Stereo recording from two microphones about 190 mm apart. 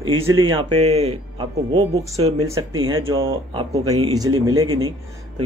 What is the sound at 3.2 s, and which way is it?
Speech, 25° right (ahead or behind).